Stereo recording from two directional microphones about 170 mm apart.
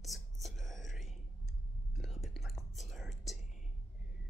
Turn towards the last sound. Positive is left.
turn(degrees=0)  # may be behind; listen again after turning